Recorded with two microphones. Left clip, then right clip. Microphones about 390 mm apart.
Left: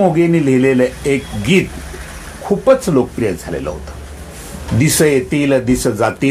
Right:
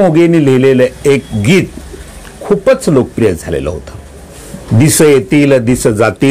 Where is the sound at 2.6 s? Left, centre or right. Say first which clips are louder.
Right 1 dB; right.